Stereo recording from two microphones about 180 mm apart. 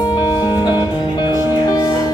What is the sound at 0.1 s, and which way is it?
Music, 25° left (ahead or behind).